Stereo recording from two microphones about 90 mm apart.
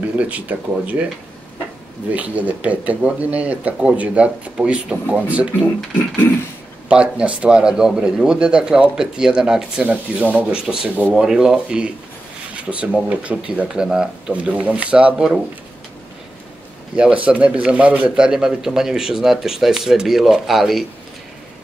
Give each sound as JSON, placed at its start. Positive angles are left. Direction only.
{"t": 0.2, "sound": "speech", "side_deg": -15}
{"t": 2.1, "sound": "speech", "side_deg": -15}
{"t": 6.9, "sound": "speech", "side_deg": -10}
{"t": 16.9, "sound": "speech", "side_deg": -15}